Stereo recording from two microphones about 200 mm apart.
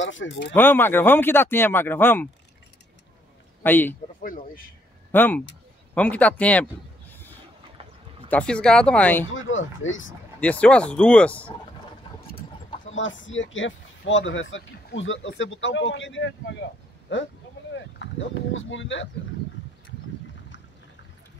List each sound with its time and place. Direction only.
0.0 s speech: 70° left (ahead or behind)
0.6 s speech: 10° left (ahead or behind)
3.6 s speech: 10° left (ahead or behind)
5.1 s speech: 10° left (ahead or behind)
8.3 s speech: 5° left (ahead or behind)
9.3 s speech: 75° left (ahead or behind)
10.4 s speech: 5° left (ahead or behind)
12.9 s speech: 70° left (ahead or behind)
17.7 s speech: 65° left (ahead or behind)